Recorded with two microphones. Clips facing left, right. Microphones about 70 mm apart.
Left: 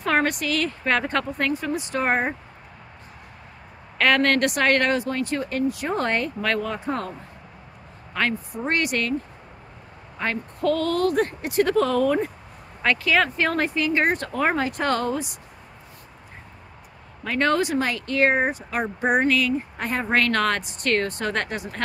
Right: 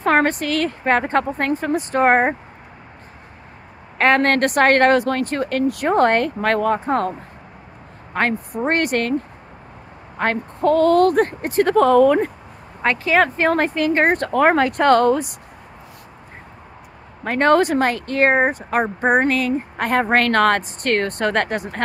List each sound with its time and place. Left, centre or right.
0.0 s speech: right
4.0 s a woman's voice: right
10.1 s a woman's voice: right
10.6 s speech: right
12.8 s a woman's voice: right
17.2 s speech: right
19.9 s a woman's voice: right